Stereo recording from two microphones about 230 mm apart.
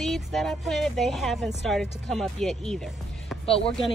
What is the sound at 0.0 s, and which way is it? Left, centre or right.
Speech, centre.